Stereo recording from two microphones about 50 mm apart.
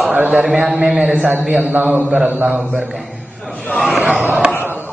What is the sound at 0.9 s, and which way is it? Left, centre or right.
Mantra, centre.